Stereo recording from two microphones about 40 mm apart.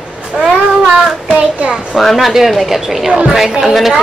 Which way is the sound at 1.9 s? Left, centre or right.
Centre.